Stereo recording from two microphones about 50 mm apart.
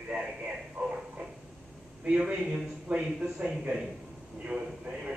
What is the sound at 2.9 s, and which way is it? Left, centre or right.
Speech, right.